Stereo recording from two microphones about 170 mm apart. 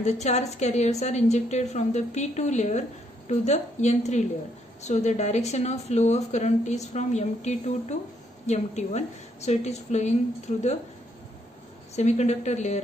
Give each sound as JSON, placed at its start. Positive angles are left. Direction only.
{"t": 0.0, "sound": "a woman's voice", "side_deg": 40}
{"t": 11.9, "sound": "a woman's voice", "side_deg": 40}